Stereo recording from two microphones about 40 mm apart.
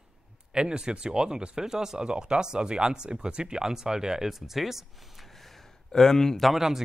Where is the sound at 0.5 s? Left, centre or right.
Right; by 6.4 s centre.